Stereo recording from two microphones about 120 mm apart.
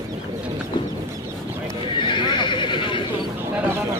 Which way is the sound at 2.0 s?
40° left (ahead or behind).